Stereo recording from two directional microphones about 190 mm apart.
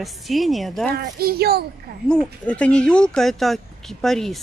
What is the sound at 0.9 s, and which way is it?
Speech, 55° right (ahead or behind).